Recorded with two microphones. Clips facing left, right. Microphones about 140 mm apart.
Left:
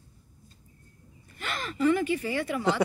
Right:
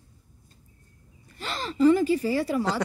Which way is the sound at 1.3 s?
30° right (ahead or behind).